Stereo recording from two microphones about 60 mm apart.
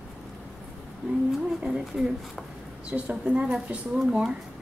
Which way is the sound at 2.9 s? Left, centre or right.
Right.